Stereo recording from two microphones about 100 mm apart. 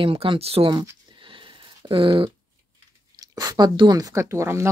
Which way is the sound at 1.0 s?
55° right (ahead or behind).